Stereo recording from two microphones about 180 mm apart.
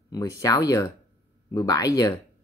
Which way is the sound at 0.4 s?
20° left (ahead or behind).